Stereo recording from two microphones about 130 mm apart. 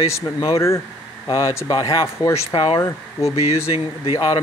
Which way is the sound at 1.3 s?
30° left (ahead or behind).